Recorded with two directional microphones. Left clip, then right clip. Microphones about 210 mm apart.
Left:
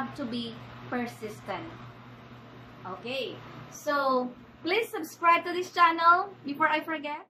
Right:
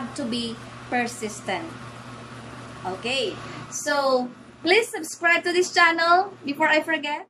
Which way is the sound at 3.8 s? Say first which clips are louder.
Right 4 dB; 25° right (ahead or behind).